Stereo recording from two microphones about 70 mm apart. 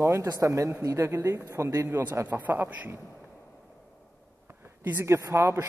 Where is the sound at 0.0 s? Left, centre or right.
Right.